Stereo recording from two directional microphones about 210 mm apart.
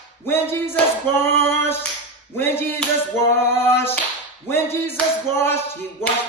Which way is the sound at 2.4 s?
10° left (ahead or behind).